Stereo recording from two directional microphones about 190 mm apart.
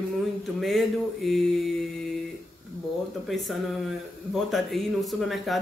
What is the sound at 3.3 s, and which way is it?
Speech, centre (ahead or behind).